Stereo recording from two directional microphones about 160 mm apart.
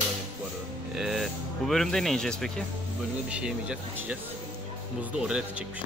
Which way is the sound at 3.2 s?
5° right (ahead or behind).